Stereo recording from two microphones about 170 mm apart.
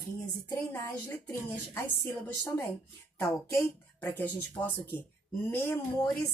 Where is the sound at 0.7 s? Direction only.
15° left (ahead or behind).